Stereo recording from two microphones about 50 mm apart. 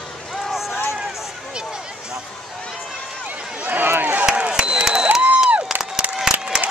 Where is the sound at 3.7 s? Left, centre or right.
Right.